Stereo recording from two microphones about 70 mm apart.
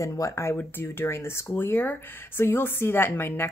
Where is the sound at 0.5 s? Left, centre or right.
Left.